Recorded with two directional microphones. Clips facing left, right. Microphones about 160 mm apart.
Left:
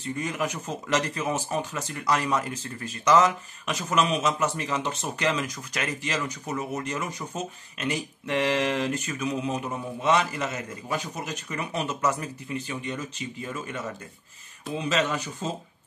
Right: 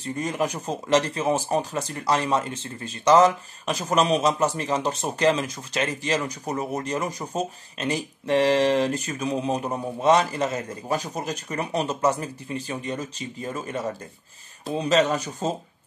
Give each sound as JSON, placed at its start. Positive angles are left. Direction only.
{"t": 0.2, "sound": "speech", "side_deg": -35}